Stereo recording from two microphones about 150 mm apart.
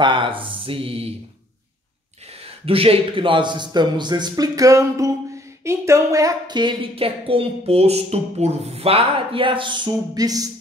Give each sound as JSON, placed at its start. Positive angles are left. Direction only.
{"t": 0.0, "sound": "a woman's voice", "side_deg": -35}
{"t": 2.6, "sound": "a man's voice", "side_deg": -40}